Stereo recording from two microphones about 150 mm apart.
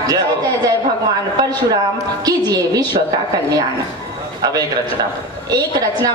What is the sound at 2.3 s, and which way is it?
Speech, 25° right (ahead or behind).